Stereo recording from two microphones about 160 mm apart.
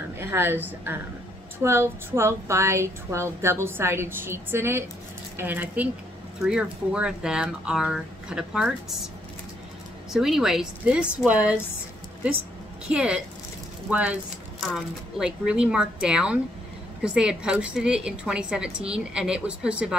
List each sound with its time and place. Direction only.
0.2 s a woman's voice: 15° right (ahead or behind)
10.1 s a woman's voice: 5° right (ahead or behind)
12.9 s a woman's voice: 5° right (ahead or behind)